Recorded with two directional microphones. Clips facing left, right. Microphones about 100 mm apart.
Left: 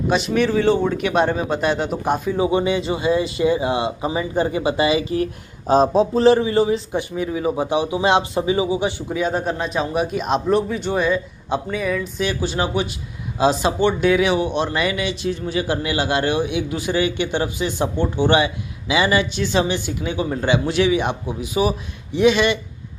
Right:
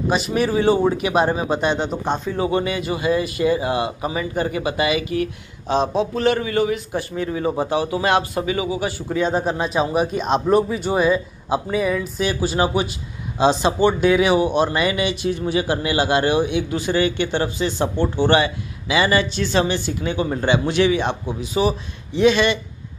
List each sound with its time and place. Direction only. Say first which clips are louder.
0.1 s speech: left 2 dB; 5° right (ahead or behind); by 7.2 s 20° left (ahead or behind)
7.2 s speech: right 1 dB; 5° left (ahead or behind); by 9.0 s 20° left (ahead or behind)
9.1 s a man's voice: right 5 dB; centre (ahead or behind)